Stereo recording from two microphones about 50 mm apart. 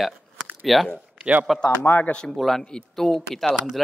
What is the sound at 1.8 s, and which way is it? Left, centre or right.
Speech, left.